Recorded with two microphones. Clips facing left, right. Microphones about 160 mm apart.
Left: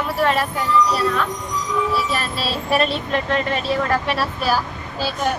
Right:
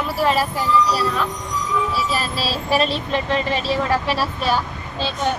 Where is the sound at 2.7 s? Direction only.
Centre (ahead or behind).